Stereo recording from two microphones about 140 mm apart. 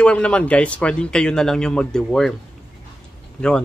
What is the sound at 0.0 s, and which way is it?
A man's voice, 10° left (ahead or behind).